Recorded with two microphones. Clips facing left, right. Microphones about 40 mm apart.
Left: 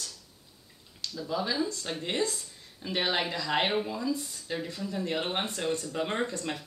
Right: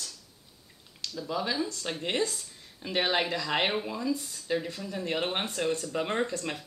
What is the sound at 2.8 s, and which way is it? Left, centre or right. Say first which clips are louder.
Speech: right 2 dB; centre.